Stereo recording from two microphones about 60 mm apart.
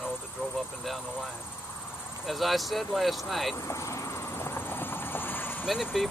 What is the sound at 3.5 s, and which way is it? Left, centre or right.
Horse, left.